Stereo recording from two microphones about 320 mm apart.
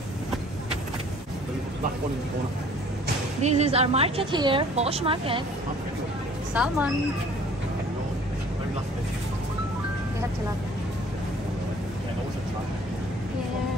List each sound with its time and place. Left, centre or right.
3.4 s speech: right
6.5 s speech: centre